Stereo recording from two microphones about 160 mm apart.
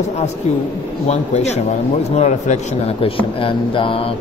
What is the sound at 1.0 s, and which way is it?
A man's voice, 45° left (ahead or behind).